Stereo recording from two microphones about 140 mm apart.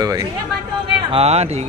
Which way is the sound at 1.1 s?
50° right (ahead or behind).